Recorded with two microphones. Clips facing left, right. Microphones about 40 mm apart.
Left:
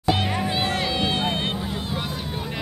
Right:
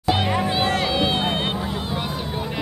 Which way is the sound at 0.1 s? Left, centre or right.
Centre.